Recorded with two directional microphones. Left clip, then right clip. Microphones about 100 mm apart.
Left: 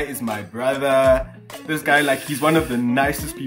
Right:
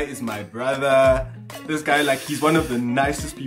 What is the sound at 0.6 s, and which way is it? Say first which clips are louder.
Speech: even; 40° left (ahead or behind).